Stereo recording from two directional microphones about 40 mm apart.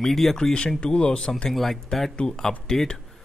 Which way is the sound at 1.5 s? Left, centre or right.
Centre.